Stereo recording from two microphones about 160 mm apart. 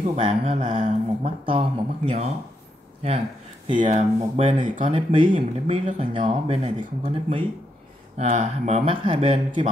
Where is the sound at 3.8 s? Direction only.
45° right (ahead or behind).